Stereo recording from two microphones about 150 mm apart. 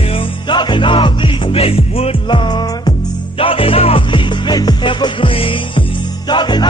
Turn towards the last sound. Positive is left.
turn(degrees=30)  # may be behind; listen again after turning